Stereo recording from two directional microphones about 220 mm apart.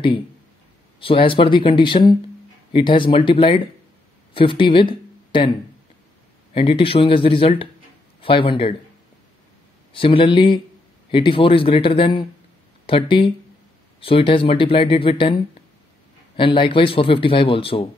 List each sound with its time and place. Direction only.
0.9 s speech: 25° left (ahead or behind)
6.5 s speech: 25° left (ahead or behind)
9.9 s speech: 25° left (ahead or behind)
16.3 s speech: 25° left (ahead or behind)